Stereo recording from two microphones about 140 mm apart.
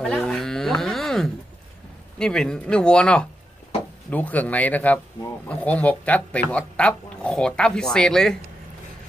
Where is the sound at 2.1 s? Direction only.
5° left (ahead or behind).